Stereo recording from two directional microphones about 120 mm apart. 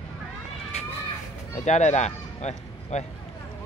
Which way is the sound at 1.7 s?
75° left (ahead or behind).